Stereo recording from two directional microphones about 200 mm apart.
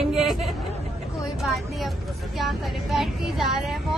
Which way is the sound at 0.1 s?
Centre (ahead or behind).